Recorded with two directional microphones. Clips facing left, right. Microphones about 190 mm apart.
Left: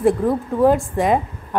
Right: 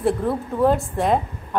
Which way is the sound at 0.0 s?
15° left (ahead or behind).